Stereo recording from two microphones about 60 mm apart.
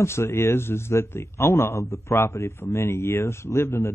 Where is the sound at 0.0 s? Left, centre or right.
Left.